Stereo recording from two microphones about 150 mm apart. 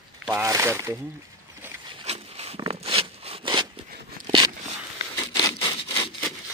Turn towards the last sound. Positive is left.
turn(degrees=30)  # may be behind; listen again after turning